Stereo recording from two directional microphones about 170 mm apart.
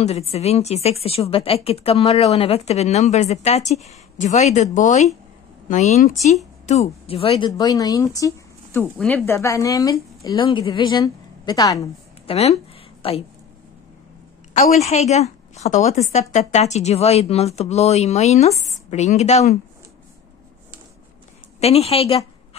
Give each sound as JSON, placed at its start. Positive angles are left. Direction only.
{"t": 0.0, "sound": "a woman's voice", "side_deg": 40}
{"t": 8.9, "sound": "speech", "side_deg": 5}
{"t": 9.2, "sound": "speech", "side_deg": 15}
{"t": 12.3, "sound": "a woman's voice", "side_deg": 35}
{"t": 14.5, "sound": "a woman's voice", "side_deg": 40}
{"t": 21.5, "sound": "a woman's voice", "side_deg": 40}